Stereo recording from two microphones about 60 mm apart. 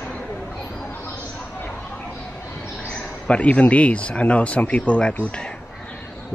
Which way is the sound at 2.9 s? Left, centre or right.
Centre.